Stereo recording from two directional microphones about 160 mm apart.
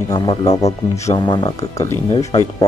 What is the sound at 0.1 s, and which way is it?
Speech, 30° left (ahead or behind).